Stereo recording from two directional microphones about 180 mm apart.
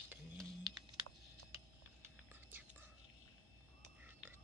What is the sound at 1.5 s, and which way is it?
Whispering, 10° right (ahead or behind).